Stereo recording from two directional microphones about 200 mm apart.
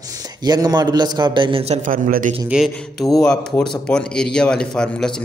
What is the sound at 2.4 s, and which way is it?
Speech, centre (ahead or behind).